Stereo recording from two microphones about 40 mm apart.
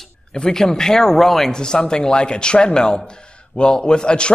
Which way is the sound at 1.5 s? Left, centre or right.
Centre.